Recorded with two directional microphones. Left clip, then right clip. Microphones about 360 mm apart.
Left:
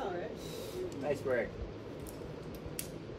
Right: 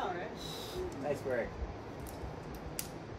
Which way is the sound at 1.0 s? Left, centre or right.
Centre.